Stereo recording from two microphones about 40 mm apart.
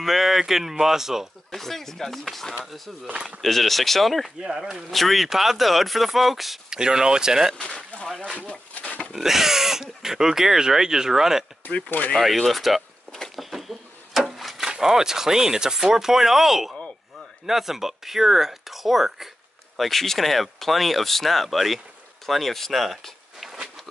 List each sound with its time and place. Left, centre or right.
0.0 s speech: centre
1.5 s speech: centre
4.4 s speech: centre
4.9 s speech: centre
6.7 s speech: centre
7.9 s a sound: left
9.1 s speech: centre
11.6 s speech: left
12.4 s speech: centre
13.4 s a sound: centre
14.7 s speech: centre
19.8 s speech: centre